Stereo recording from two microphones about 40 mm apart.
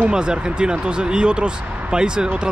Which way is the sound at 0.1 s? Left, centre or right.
Right.